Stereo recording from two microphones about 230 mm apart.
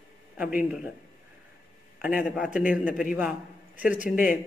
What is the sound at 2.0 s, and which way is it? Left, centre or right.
A man's voice, centre.